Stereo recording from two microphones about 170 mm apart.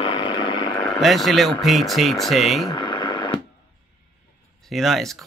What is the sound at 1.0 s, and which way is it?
Speech, centre (ahead or behind).